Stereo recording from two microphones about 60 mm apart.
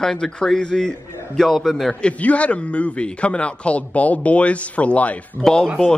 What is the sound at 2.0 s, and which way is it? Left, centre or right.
A man's voice, centre.